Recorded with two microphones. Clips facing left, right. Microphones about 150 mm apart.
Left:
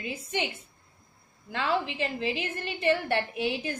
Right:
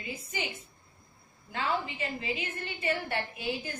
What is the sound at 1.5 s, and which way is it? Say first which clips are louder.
A woman's voice: left 3 dB; 90° left.